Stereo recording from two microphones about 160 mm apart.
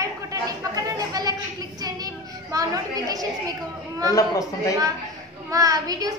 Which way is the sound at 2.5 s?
25° right (ahead or behind).